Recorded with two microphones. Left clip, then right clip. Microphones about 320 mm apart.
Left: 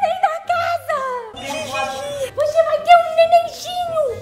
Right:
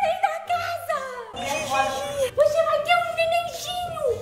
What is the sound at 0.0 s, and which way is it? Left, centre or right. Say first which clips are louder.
Music: left 5 dB; left.